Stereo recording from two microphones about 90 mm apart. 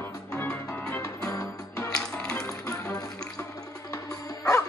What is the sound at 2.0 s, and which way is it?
Music, 10° left (ahead or behind).